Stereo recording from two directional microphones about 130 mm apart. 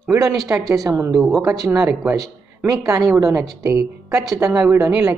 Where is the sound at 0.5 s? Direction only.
15° right (ahead or behind).